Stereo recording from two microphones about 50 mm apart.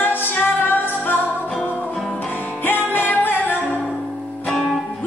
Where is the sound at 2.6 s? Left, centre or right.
Left.